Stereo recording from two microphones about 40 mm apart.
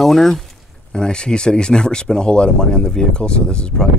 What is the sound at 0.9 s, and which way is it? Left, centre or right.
Speech, left.